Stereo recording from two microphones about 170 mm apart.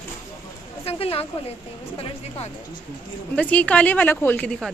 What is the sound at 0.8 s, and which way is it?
Speech, 35° left (ahead or behind).